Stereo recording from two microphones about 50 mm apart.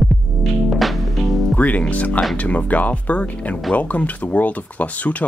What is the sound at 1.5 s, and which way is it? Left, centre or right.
Speech, left.